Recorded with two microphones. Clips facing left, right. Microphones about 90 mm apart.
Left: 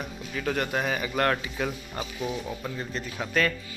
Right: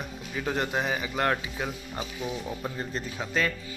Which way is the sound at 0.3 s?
20° right (ahead or behind).